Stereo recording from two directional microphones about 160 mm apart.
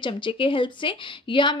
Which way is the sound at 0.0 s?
30° left (ahead or behind).